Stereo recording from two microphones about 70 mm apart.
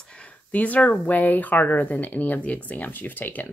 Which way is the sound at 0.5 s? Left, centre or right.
Left.